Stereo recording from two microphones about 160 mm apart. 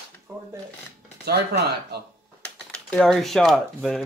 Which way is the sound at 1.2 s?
90° right.